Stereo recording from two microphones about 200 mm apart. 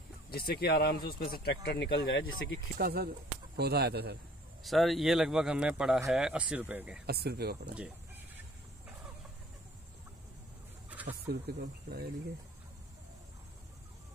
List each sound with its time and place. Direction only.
0.6 s speech: 50° left (ahead or behind); by 2.6 s 70° left (ahead or behind)
2.8 s speech: 50° right (ahead or behind)
4.6 s speech: centre (ahead or behind)
7.1 s speech: 50° right (ahead or behind)
11.2 s speech: 50° right (ahead or behind)